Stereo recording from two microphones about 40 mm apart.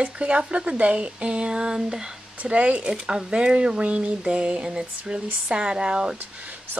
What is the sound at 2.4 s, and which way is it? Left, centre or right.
Speech, right.